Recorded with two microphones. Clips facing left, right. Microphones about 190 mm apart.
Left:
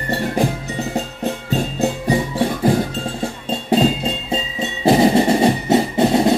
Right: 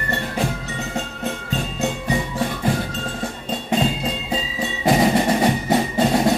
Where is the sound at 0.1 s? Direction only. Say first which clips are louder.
Left 5 dB; 35° left (ahead or behind).